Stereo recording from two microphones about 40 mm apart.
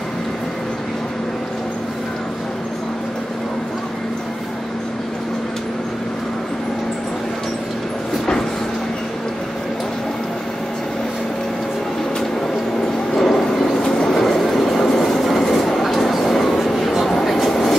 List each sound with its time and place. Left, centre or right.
13.1 s vehicle: centre
13.8 s train: centre
14.1 s train: centre